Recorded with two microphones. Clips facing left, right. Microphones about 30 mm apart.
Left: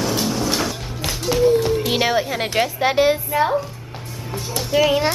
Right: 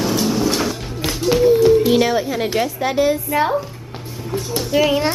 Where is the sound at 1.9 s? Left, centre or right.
Centre.